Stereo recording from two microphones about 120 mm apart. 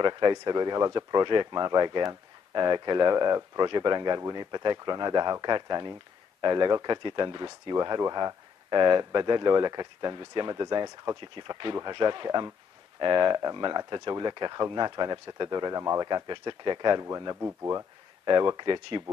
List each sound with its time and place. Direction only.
0.0 s speech: 40° right (ahead or behind)
15.8 s speech: 25° right (ahead or behind)
16.1 s speech: 35° right (ahead or behind)
18.2 s speech: 40° right (ahead or behind)